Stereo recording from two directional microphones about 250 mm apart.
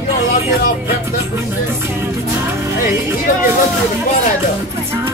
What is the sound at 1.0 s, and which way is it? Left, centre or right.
Music, centre.